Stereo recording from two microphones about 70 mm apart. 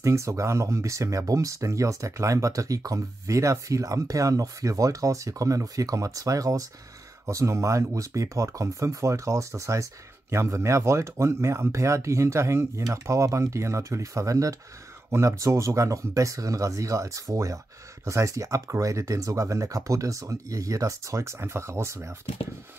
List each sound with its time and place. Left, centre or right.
0.0 s speech: right